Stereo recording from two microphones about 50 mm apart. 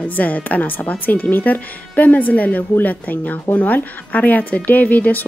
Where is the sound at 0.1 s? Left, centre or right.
Left.